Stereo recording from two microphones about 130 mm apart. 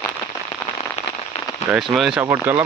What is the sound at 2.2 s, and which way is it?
Speech, 20° right (ahead or behind).